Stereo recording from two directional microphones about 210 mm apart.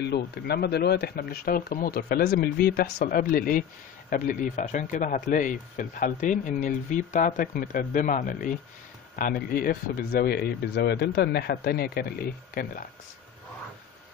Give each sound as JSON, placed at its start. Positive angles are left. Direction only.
{"t": 0.0, "sound": "speech", "side_deg": 50}